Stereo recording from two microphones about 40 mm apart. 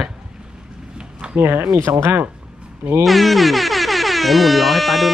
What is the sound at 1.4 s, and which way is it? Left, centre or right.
Speech, right.